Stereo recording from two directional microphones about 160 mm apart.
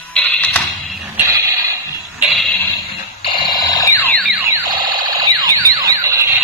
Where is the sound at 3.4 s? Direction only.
25° left (ahead or behind).